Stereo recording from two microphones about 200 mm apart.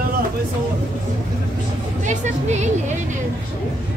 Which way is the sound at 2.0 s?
35° right (ahead or behind).